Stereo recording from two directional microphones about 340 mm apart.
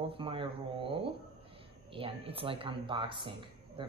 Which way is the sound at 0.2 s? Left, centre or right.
Centre.